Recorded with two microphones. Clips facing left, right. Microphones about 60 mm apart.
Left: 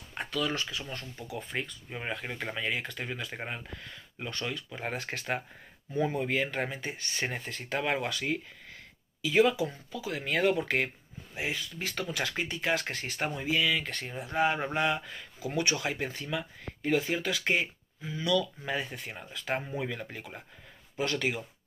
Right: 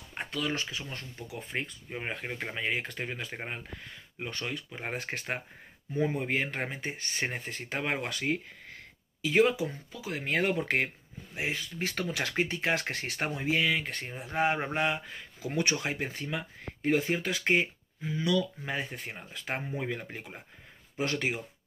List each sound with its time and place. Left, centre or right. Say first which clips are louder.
0.1 s speech: left 1 dB; right